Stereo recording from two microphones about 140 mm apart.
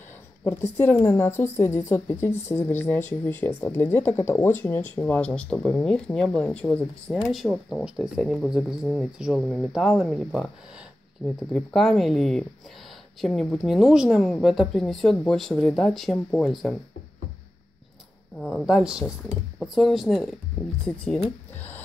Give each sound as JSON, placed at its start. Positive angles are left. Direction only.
{"t": 0.4, "sound": "speech", "side_deg": 15}
{"t": 18.4, "sound": "speech", "side_deg": 5}